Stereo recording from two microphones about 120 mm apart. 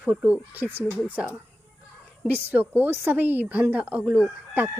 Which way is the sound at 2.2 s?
15° right (ahead or behind).